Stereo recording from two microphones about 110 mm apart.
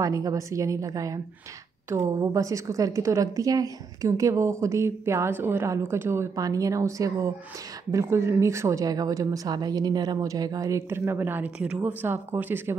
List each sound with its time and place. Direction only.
0.0 s a woman's voice: 30° right (ahead or behind)